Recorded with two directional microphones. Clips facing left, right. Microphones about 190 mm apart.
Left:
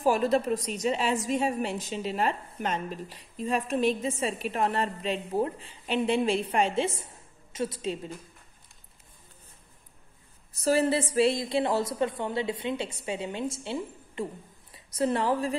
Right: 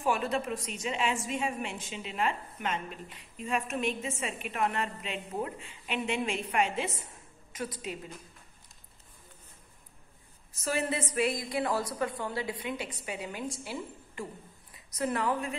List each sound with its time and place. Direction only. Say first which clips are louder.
0.0 s a woman's voice: left 6 dB; 35° left (ahead or behind)
10.6 s a woman's voice: left 7 dB; 35° left (ahead or behind)